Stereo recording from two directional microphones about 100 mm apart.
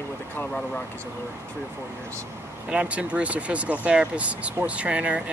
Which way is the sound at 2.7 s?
10° right (ahead or behind).